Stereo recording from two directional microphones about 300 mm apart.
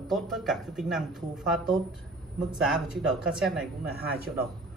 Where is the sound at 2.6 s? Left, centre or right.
Centre.